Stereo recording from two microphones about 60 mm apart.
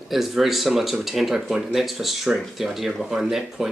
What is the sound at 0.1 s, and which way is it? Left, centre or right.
Speech, centre.